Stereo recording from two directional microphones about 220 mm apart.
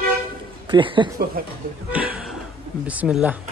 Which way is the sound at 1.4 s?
40° right (ahead or behind).